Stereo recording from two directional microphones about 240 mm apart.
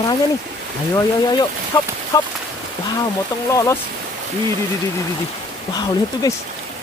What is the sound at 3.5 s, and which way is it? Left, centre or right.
Speech, centre.